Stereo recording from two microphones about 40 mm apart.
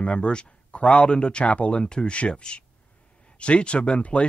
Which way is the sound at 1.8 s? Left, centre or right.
Left.